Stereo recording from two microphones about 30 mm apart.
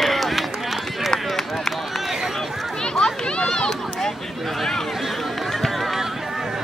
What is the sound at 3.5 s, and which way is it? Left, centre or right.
Run, left.